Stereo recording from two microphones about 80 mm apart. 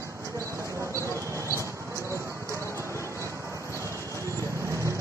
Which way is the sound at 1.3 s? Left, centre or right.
Right.